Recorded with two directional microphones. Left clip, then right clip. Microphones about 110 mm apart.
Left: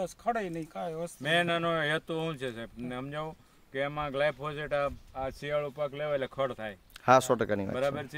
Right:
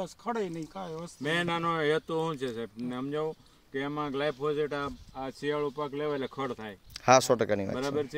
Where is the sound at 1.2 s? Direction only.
50° left (ahead or behind).